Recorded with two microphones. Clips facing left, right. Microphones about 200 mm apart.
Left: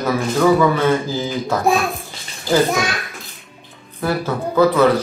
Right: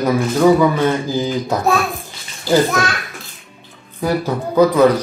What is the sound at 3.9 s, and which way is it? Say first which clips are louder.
Speech: right 2 dB; 15° right (ahead or behind).